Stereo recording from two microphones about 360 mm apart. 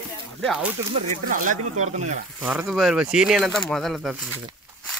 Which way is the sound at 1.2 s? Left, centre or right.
Right.